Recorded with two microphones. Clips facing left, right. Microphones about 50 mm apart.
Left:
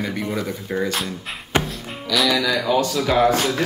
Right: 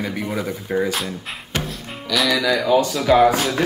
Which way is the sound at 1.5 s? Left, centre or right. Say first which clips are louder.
Left 5 dB; left.